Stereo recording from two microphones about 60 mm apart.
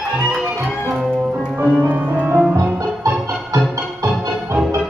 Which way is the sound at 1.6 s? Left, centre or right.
Right.